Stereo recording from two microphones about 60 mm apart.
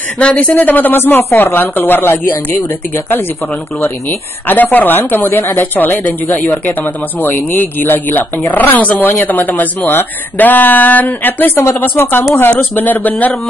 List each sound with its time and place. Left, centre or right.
0.2 s speech: left
4.5 s speech: left